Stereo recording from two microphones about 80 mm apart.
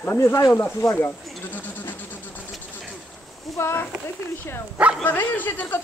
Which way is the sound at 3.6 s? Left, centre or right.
Left.